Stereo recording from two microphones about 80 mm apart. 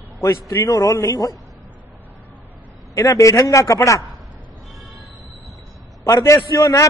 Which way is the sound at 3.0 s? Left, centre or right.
Left.